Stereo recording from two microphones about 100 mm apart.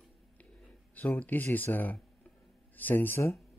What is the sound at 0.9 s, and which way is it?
Speech, 15° left (ahead or behind).